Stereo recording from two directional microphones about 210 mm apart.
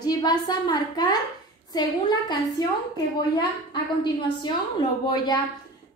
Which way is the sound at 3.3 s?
20° left (ahead or behind).